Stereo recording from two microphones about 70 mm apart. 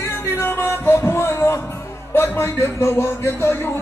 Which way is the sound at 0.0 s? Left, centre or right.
Left.